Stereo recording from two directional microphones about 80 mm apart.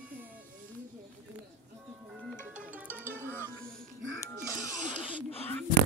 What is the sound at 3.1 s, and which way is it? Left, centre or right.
Music, left.